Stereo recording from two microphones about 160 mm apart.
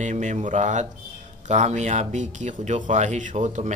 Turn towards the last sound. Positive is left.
turn(degrees=-45)  # may be behind; listen again after turning